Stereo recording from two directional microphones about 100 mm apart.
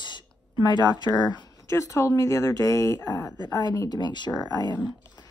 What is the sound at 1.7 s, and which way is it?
Speech, 30° left (ahead or behind).